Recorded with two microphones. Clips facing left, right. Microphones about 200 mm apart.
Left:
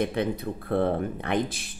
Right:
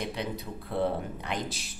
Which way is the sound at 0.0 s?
55° left (ahead or behind).